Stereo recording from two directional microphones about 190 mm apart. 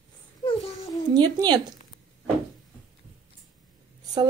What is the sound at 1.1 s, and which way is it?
Speech, 20° right (ahead or behind).